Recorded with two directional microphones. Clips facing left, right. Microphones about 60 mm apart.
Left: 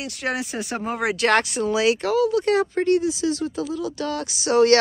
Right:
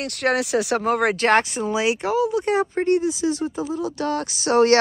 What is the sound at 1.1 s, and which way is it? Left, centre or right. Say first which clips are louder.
Speech: right 1 dB; right.